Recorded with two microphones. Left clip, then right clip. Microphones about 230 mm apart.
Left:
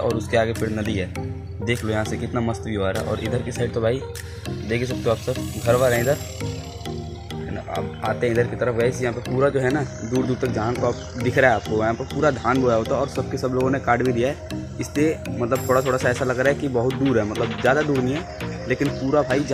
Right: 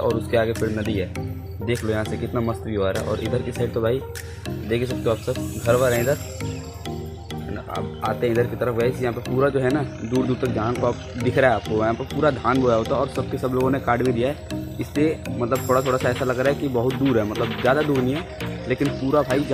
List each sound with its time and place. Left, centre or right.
0.0 s speech: centre
7.7 s speech: centre